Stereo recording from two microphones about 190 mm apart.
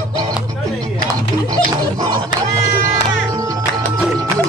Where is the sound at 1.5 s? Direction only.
20° right (ahead or behind).